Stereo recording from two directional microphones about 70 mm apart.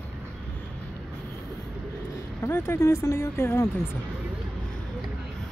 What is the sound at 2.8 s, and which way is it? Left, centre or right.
Speech, left.